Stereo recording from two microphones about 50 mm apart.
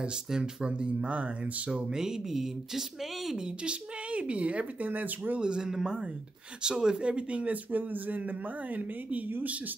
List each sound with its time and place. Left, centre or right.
0.0 s speech: centre
3.3 s speech: centre; by 5.4 s right
5.4 s speech: centre; by 9.8 s right